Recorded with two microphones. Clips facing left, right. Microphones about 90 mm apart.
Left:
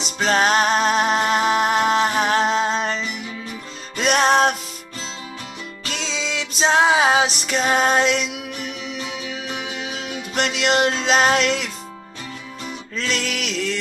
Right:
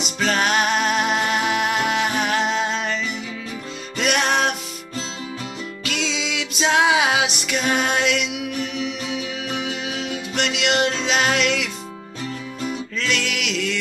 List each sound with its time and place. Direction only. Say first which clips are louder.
0.0 s music: left 2 dB; 35° left (ahead or behind)
4.0 s music: left 4 dB; 35° left (ahead or behind)
5.9 s music: right 1 dB; 35° left (ahead or behind)
10.3 s music: left 2 dB; 40° left (ahead or behind)
12.9 s music: left 3 dB; 40° left (ahead or behind)